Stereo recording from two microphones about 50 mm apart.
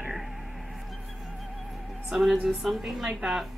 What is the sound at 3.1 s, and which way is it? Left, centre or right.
Speech, centre.